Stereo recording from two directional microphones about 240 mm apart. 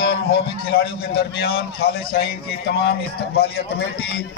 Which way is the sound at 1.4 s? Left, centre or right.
Left.